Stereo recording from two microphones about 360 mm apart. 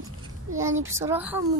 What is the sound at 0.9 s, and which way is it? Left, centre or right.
Speech, centre.